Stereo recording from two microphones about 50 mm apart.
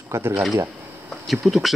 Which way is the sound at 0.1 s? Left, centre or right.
Right.